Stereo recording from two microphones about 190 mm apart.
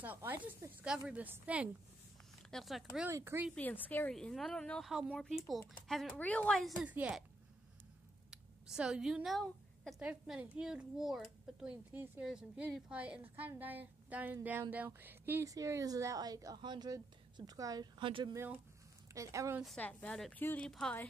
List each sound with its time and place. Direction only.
0.0 s a woman's voice: 10° right (ahead or behind)
3.1 s a woman's voice: 15° right (ahead or behind)
3.5 s speech: 10° left (ahead or behind)
8.3 s a woman's voice: 5° right (ahead or behind)
19.6 s speech: 5° left (ahead or behind)